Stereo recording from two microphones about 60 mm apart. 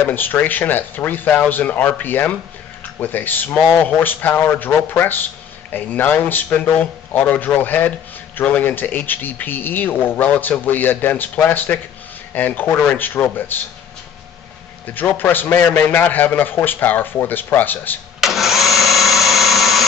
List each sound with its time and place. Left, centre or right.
0.0 s a man's voice: left
15.1 s a man's voice: left
18.2 s engine: centre